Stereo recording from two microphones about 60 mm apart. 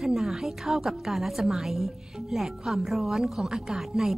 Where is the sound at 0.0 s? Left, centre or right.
Centre.